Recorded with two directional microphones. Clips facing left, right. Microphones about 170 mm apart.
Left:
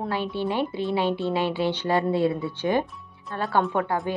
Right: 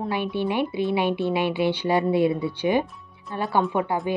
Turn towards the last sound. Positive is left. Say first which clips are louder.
# right 1 dB
turn(degrees=-10)  # may be behind; listen again after turning